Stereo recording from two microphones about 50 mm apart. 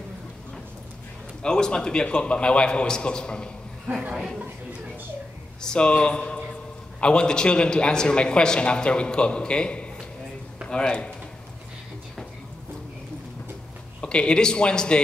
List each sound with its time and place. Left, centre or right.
1.4 s a man's voice: centre
3.9 s a woman's voice: right
5.6 s a man's voice: centre
14.0 s a man's voice: centre